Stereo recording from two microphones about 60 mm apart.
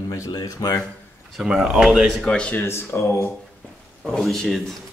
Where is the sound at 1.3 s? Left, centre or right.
Centre.